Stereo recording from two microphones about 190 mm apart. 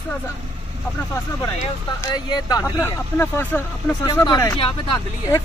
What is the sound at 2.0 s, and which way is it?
Speech, 20° left (ahead or behind).